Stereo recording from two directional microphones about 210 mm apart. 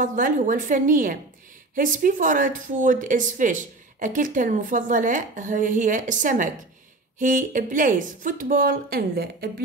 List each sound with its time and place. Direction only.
0.0 s speech: 40° right (ahead or behind)